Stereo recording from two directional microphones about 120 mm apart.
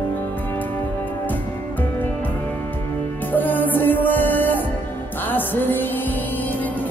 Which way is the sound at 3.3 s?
15° left (ahead or behind).